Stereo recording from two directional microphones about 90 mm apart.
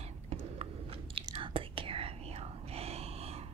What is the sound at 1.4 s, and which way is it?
Whispering, 80° right.